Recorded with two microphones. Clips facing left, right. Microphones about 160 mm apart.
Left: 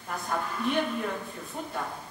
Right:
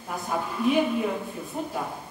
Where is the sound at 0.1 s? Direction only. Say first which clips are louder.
Right 2 dB; 10° right (ahead or behind).